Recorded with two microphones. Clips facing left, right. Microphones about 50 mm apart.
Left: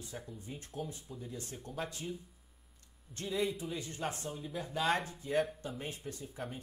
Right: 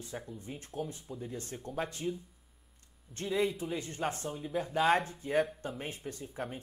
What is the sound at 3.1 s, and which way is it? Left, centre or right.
Speech, centre.